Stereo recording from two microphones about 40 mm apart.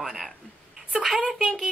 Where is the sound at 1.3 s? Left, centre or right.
Centre.